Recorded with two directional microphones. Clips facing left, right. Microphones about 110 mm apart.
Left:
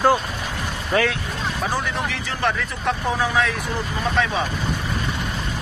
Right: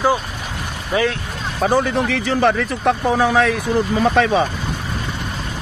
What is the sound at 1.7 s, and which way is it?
A man's voice, 75° right (ahead or behind).